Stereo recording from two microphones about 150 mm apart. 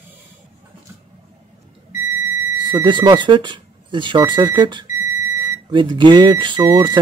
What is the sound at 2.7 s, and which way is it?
Speech, 30° right (ahead or behind).